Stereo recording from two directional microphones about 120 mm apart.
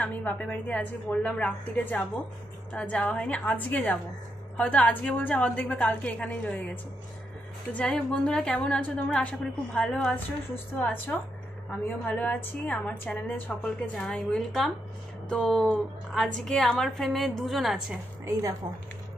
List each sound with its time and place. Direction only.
0.0 s a woman's voice: 10° left (ahead or behind); by 17.9 s 5° right (ahead or behind)
18.2 s a woman's voice: 25° right (ahead or behind)